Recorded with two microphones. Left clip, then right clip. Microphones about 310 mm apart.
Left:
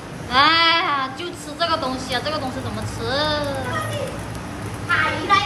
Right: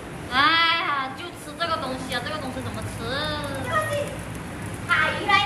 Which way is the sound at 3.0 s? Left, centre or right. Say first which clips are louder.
Left 7 dB; centre.